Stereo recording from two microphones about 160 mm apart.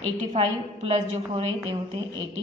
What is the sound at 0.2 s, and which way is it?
Speech, 50° right (ahead or behind).